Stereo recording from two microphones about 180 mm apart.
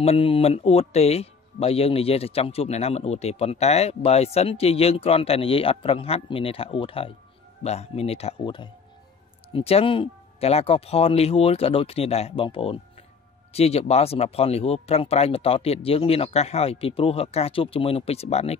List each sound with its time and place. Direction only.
0.0 s speech: 30° left (ahead or behind)